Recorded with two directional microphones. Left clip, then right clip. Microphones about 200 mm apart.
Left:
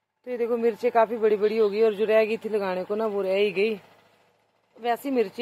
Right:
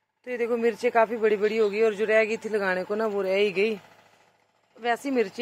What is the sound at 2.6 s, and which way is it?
Speech, centre (ahead or behind).